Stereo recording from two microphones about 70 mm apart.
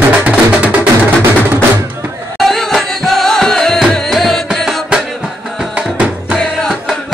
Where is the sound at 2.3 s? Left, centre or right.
Centre.